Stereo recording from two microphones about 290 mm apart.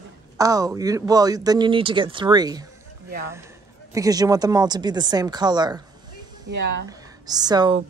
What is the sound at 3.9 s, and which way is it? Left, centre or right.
Speech, centre.